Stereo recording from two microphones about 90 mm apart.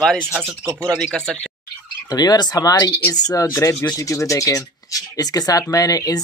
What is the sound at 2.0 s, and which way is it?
Speech, 50° left (ahead or behind).